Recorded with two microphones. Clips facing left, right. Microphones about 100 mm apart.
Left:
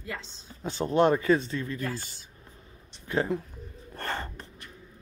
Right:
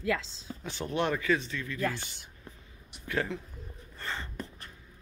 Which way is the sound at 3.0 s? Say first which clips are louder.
Left 4 dB; 30° left (ahead or behind).